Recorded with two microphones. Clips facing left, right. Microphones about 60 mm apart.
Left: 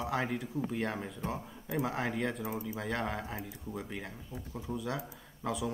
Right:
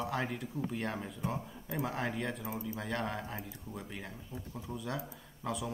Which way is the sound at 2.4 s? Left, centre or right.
Centre.